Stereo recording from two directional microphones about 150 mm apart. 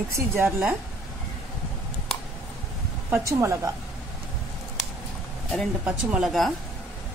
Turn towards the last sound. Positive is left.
turn(degrees=0)  # may be behind; listen again after turning